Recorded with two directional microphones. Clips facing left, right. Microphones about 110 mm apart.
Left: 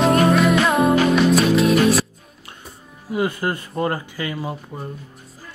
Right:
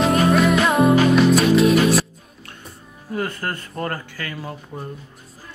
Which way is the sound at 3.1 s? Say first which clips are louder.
Left 4 dB; 15° left (ahead or behind).